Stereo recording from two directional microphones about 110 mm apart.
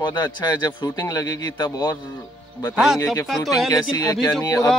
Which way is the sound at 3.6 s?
35° left (ahead or behind).